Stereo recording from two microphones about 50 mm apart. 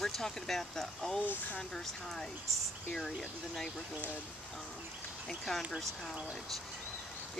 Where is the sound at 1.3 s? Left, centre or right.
Left.